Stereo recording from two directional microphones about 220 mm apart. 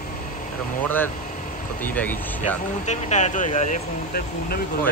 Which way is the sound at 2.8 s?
30° left (ahead or behind).